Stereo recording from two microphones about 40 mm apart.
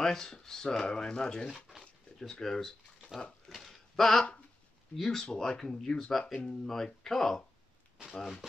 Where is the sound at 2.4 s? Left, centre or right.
Centre.